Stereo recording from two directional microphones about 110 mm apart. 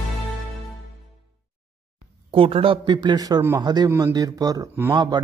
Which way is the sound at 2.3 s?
55° right (ahead or behind).